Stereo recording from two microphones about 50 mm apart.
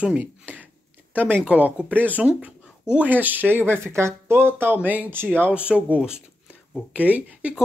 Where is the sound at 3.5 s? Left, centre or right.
Right.